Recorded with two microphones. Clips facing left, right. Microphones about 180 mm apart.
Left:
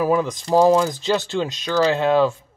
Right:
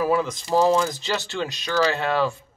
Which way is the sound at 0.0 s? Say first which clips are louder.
Left 3 dB; 20° left (ahead or behind).